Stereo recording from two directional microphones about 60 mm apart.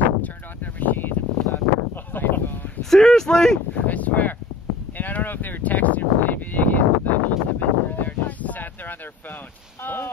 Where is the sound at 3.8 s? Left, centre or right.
Left.